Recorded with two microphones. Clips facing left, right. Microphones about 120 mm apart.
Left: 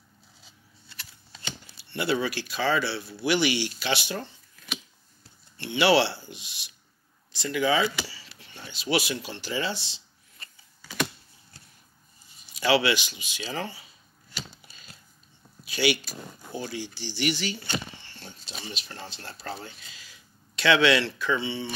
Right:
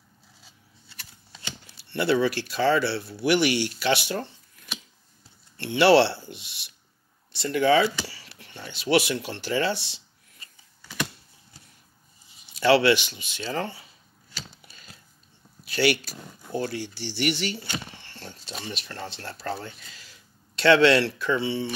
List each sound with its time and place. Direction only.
2.0 s speech: 65° right (ahead or behind)
5.6 s speech: 60° right (ahead or behind)
12.5 s speech: 55° right (ahead or behind)
15.7 s speech: 60° right (ahead or behind)